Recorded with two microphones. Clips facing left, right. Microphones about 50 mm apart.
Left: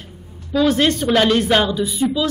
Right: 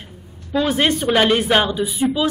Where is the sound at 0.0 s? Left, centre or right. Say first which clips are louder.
Left 1 dB; centre.